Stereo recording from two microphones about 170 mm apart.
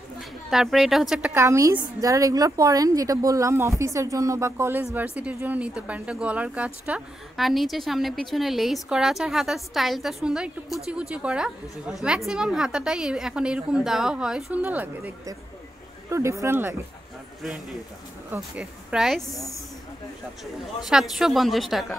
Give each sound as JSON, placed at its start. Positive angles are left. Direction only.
{"t": 0.5, "sound": "a woman's voice", "side_deg": 0}
{"t": 1.3, "sound": "a woman's voice", "side_deg": -15}
{"t": 18.3, "sound": "a woman's voice", "side_deg": -5}
{"t": 20.8, "sound": "a woman's voice", "side_deg": 0}